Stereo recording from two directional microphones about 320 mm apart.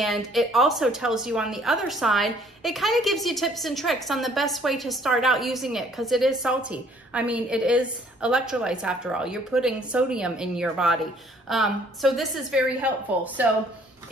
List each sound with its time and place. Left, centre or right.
0.0 s a woman's voice: centre